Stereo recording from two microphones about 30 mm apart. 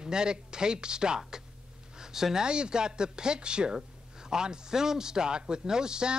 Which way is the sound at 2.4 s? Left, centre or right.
Right.